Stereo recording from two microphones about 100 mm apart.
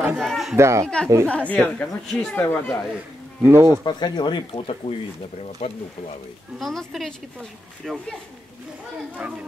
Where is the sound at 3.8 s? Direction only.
45° left (ahead or behind).